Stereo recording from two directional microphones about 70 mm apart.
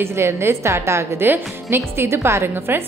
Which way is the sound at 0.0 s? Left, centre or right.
Right.